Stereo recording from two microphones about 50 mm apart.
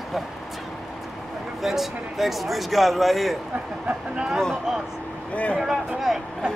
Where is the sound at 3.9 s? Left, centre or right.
Centre.